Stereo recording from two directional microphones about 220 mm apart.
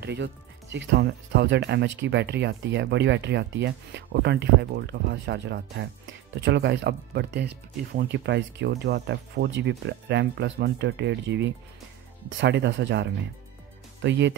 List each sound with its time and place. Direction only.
0.0 s speech: 55° right (ahead or behind)